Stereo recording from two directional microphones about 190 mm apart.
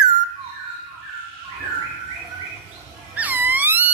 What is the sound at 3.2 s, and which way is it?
Wail, 10° right (ahead or behind).